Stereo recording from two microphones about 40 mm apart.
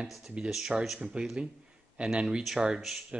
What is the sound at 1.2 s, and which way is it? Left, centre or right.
Speech, centre.